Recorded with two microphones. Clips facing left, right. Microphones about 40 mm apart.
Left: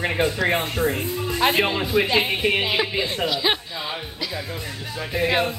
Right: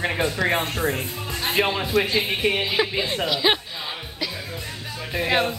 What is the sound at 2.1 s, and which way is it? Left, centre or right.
Speech, left.